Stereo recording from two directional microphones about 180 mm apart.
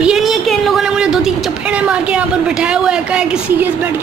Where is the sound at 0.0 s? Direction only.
Centre (ahead or behind).